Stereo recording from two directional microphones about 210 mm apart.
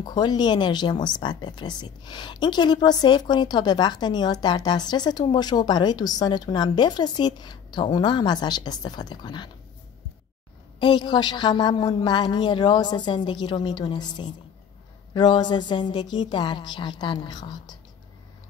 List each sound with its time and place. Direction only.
0.0 s speech: 20° left (ahead or behind)
10.8 s speech: 20° left (ahead or behind)